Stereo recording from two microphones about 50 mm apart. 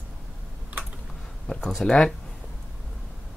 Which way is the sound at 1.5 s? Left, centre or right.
Centre.